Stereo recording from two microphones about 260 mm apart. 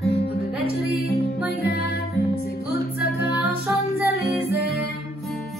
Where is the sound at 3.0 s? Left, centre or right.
Left.